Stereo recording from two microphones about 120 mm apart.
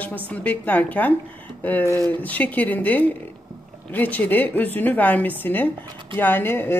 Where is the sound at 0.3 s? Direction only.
10° left (ahead or behind).